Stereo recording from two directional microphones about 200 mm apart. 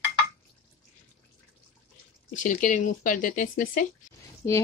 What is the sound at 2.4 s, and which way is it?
Speech, 40° left (ahead or behind).